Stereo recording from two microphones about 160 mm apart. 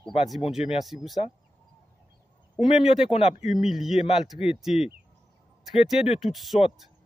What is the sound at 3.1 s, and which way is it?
Speech, 45° left (ahead or behind).